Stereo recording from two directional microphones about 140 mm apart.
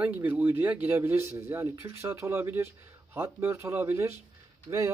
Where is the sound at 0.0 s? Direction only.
10° right (ahead or behind).